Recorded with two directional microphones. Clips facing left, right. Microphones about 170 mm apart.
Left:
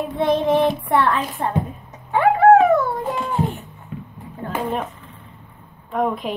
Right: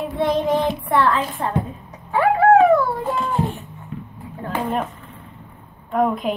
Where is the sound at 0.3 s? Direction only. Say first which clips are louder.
Left 3 dB; 25° left (ahead or behind).